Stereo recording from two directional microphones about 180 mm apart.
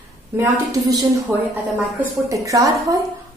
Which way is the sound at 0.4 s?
20° right (ahead or behind).